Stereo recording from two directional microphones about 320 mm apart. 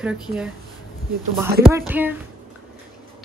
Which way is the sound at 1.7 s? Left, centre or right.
Centre.